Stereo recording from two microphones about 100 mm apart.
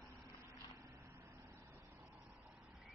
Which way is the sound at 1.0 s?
25° right (ahead or behind).